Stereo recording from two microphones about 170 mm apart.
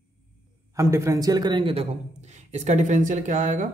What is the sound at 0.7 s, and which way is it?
A man's voice, 15° right (ahead or behind).